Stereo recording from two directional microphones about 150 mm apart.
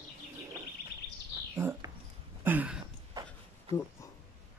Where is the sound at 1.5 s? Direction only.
15° right (ahead or behind).